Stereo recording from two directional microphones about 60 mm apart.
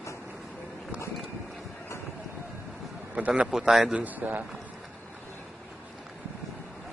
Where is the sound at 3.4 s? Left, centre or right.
Centre.